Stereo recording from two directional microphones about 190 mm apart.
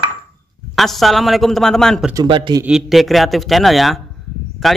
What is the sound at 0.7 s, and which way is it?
Speech, centre (ahead or behind).